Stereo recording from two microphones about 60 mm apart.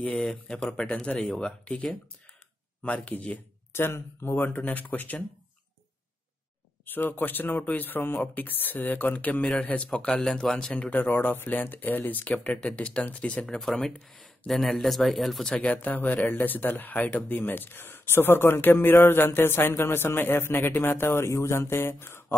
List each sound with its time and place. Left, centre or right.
0.3 s speech: centre
2.8 s speech: left
3.7 s speech: left
6.9 s speech: left
9.8 s speech: centre
10.9 s speech: left
13.6 s speech: centre
15.7 s speech: left